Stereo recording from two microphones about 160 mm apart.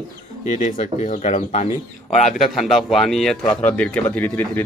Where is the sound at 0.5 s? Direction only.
50° left (ahead or behind).